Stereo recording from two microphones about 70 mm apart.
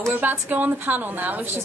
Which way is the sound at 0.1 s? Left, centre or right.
Right.